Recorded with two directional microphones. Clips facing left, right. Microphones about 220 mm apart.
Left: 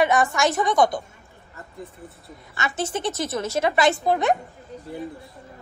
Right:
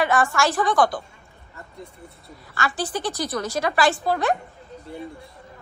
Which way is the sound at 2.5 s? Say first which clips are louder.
Even; 20° left (ahead or behind).